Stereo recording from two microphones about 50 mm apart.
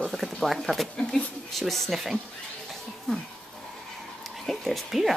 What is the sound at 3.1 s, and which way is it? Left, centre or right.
Speech, centre.